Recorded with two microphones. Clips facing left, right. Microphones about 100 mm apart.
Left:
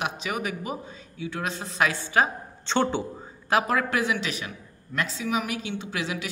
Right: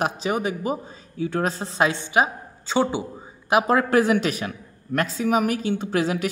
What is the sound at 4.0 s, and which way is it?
A woman's voice, 45° right (ahead or behind).